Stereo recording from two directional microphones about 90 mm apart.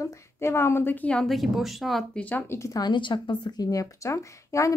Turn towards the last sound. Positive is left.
turn(degrees=35)  # may be behind; listen again after turning